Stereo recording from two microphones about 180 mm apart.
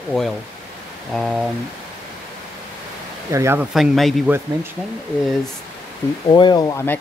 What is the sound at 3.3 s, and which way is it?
Speech, 15° right (ahead or behind).